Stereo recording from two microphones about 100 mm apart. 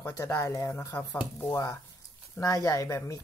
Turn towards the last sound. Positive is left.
turn(degrees=30)  # may be behind; listen again after turning